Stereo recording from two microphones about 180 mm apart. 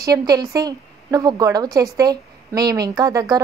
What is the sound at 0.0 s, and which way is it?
A woman's voice, 20° right (ahead or behind).